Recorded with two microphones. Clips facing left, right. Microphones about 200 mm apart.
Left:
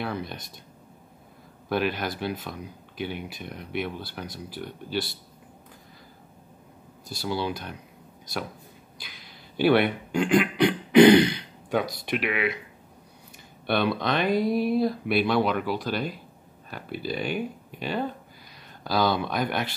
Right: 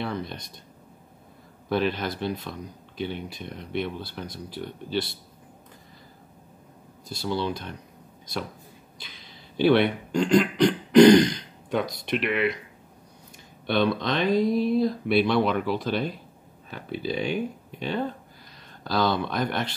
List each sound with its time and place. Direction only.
0.0 s speech: 5° left (ahead or behind)
1.7 s speech: 5° left (ahead or behind)
7.2 s speech: 5° left (ahead or behind)
9.0 s speech: 5° left (ahead or behind)
11.0 s throat clearing: 60° left (ahead or behind)
11.3 s speech: 5° left (ahead or behind)
13.7 s speech: 5° left (ahead or behind)